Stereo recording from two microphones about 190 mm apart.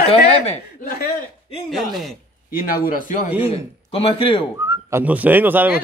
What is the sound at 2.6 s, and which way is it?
Speech, 50° left (ahead or behind).